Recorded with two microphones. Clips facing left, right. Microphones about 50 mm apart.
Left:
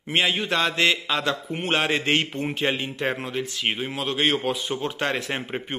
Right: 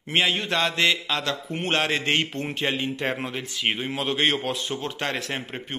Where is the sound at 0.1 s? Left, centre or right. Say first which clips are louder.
Even; centre.